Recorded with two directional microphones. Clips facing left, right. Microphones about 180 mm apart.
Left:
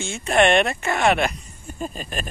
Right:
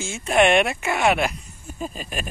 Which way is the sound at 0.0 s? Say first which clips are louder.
Even; 5° right (ahead or behind).